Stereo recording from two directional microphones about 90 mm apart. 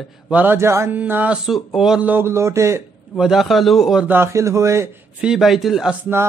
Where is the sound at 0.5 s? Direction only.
30° right (ahead or behind).